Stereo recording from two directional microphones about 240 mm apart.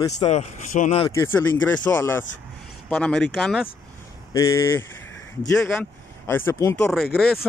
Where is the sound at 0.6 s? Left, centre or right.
Left.